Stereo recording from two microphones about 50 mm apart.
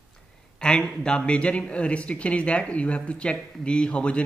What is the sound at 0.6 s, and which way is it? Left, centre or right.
Speech, centre.